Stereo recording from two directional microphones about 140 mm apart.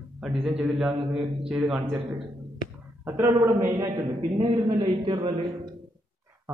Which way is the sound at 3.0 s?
20° right (ahead or behind).